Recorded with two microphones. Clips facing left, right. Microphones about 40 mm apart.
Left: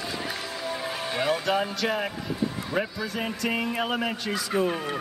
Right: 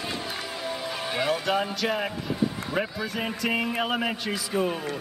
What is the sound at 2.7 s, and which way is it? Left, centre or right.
Speech, centre.